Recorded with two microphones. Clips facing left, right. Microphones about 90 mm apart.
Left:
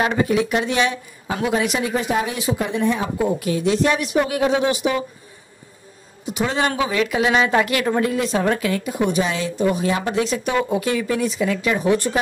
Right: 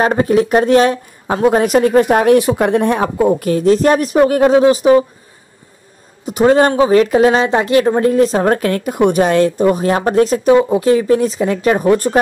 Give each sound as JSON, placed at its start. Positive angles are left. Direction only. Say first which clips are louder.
{"t": 0.0, "sound": "a woman's voice", "louder": "right 6 dB", "side_deg": -40}
{"t": 6.2, "sound": "a man's voice", "louder": "right 11 dB", "side_deg": -45}
{"t": 10.5, "sound": "speech", "louder": "right 11 dB", "side_deg": -30}